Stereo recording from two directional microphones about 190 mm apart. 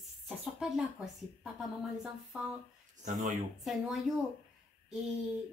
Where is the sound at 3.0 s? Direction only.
40° right (ahead or behind).